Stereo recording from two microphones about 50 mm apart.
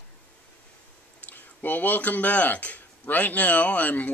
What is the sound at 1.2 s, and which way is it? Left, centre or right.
Speech, left.